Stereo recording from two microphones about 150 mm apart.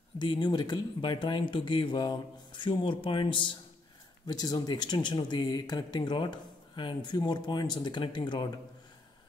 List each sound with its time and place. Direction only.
0.2 s speech: 30° left (ahead or behind)